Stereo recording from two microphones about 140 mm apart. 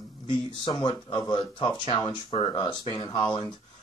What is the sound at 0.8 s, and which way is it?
Speech, 35° left (ahead or behind).